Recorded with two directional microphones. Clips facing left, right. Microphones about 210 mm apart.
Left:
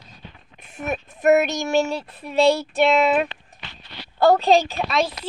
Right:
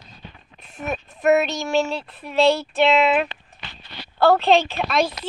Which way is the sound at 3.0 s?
40° left (ahead or behind).